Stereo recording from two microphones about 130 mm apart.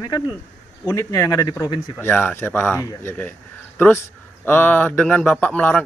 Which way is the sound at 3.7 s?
15° left (ahead or behind).